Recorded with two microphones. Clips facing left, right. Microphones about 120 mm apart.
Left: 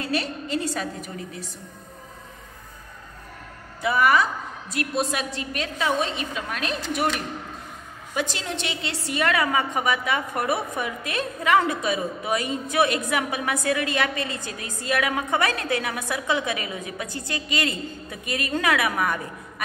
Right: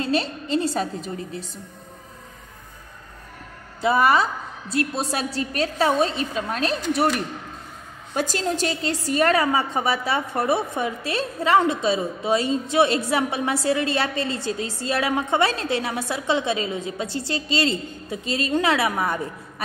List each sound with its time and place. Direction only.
0.0 s a woman's voice: 30° right (ahead or behind)
3.8 s a woman's voice: 30° right (ahead or behind)
8.1 s a woman's voice: 45° right (ahead or behind)